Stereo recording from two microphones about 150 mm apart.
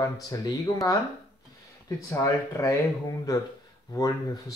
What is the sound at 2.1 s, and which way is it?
Speech, 20° left (ahead or behind).